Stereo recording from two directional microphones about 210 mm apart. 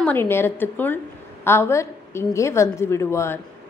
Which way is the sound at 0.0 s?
10° left (ahead or behind).